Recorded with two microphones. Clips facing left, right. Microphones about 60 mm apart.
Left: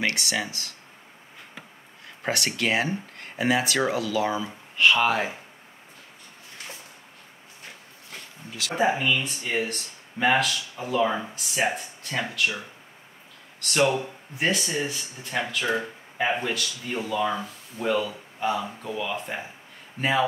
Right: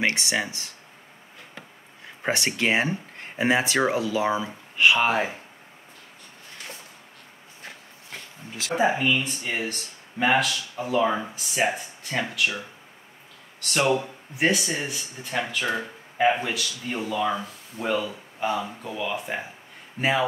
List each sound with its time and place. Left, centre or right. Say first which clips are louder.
0.0 s speech: right 2 dB; right
2.2 s speech: right 2 dB; right
8.7 s speech: right 1 dB; centre
14.3 s speech: right 2 dB; centre